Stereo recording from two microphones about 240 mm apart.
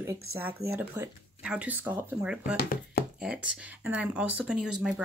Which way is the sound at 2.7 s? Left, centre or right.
Left.